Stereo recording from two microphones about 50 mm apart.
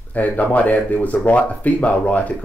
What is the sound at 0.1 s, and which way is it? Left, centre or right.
Speech, left.